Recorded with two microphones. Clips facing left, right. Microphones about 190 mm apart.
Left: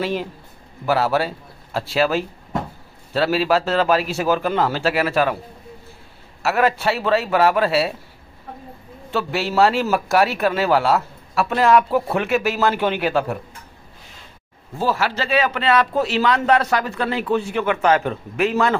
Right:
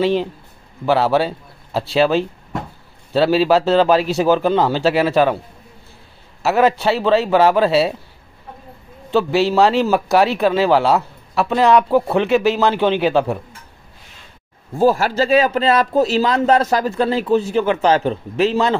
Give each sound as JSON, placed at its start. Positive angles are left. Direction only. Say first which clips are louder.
{"t": 0.0, "sound": "a man's voice", "louder": "right 6 dB", "side_deg": 5}
{"t": 6.4, "sound": "a man's voice", "louder": "right 4 dB", "side_deg": 0}
{"t": 9.1, "sound": "a man's voice", "louder": "right 6 dB", "side_deg": 0}
{"t": 14.8, "sound": "a man's voice", "louder": "right 7 dB", "side_deg": -45}